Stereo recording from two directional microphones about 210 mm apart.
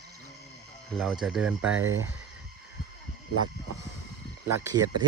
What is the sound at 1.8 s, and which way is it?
Speech, 70° right (ahead or behind).